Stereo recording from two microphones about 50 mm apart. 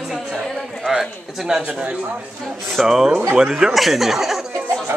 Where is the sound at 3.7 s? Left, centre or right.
Centre.